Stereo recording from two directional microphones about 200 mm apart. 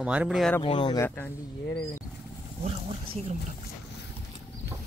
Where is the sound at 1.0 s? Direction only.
10° left (ahead or behind).